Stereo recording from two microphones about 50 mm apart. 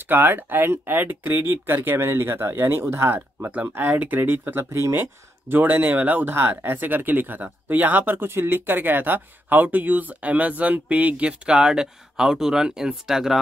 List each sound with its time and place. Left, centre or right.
0.0 s speech: right; by 13.4 s centre